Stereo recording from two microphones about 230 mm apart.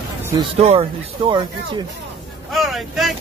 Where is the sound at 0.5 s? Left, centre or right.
Right.